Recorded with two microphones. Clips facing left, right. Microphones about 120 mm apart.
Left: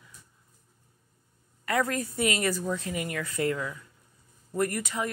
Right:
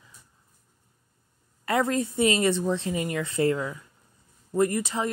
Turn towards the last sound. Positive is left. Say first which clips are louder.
# right 4 dB
turn(degrees=-25)  # may be behind; listen again after turning